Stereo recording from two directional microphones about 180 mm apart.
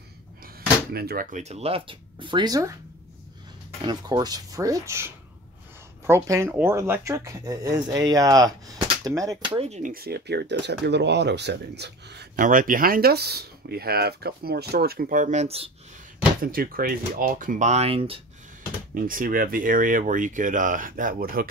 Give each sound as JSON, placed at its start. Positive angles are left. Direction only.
{"t": 0.9, "sound": "speech", "side_deg": -55}
{"t": 3.8, "sound": "speech", "side_deg": -25}
{"t": 9.6, "sound": "speech", "side_deg": -40}
{"t": 9.9, "sound": "speech", "side_deg": -60}
{"t": 12.4, "sound": "speech", "side_deg": -50}
{"t": 16.5, "sound": "speech", "side_deg": -55}
{"t": 18.9, "sound": "speech", "side_deg": -50}